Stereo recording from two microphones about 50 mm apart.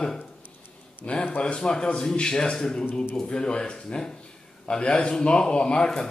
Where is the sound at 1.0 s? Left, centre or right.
Left.